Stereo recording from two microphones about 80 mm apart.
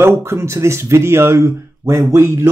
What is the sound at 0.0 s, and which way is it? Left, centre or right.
Speech, right.